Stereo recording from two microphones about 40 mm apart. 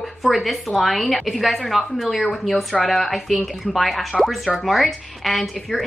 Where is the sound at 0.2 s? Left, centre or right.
Centre.